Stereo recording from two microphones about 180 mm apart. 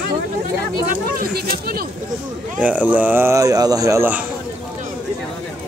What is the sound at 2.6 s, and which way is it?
Speech, 10° right (ahead or behind).